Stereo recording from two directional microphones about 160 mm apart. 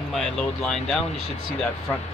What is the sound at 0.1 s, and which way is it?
Speech, 5° left (ahead or behind).